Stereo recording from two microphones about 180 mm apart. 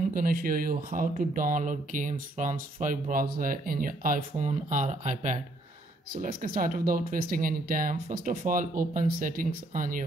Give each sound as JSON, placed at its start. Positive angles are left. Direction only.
{"t": 0.1, "sound": "speech", "side_deg": -55}
{"t": 6.5, "sound": "speech", "side_deg": -50}